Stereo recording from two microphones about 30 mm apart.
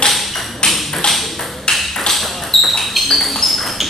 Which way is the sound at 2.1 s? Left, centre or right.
Centre.